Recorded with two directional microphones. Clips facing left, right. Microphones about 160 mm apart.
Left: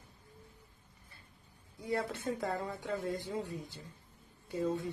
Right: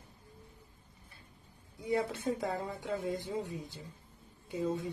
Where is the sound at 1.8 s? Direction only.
20° right (ahead or behind).